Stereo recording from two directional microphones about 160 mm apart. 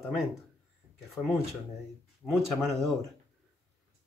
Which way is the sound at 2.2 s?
Centre (ahead or behind).